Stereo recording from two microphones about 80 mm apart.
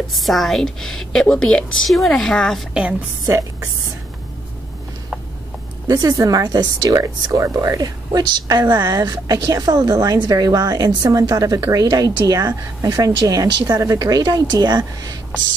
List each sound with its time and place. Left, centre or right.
0.1 s speech: centre
2.7 s a woman's voice: centre
3.3 s speech: right
5.9 s speech: right
14.2 s speech: right